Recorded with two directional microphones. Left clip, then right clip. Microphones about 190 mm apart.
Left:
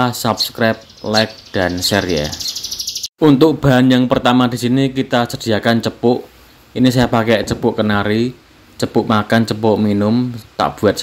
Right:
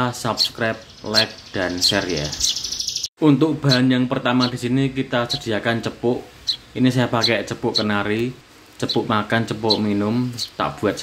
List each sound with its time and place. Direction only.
0.0 s a man's voice: 25° left (ahead or behind)